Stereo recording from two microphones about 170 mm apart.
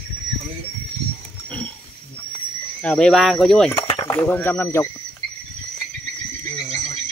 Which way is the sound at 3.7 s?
25° left (ahead or behind).